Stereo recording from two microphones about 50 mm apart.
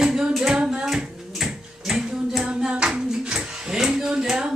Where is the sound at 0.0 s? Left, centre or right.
Centre.